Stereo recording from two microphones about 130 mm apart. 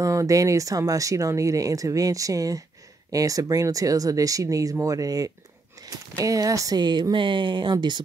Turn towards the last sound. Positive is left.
turn(degrees=-35)  # may be behind; listen again after turning